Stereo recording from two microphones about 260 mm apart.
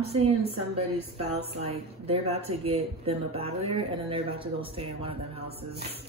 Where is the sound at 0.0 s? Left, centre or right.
Right.